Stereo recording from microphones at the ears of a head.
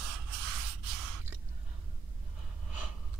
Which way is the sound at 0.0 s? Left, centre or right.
Right.